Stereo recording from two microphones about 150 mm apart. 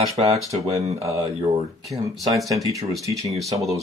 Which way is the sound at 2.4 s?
Centre (ahead or behind).